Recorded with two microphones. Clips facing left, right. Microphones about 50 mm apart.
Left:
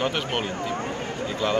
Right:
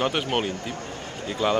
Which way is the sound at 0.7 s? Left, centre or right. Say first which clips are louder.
Left 5 dB; left.